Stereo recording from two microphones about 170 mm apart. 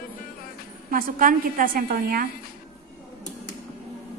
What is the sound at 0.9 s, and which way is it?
A woman's voice, 55° right (ahead or behind).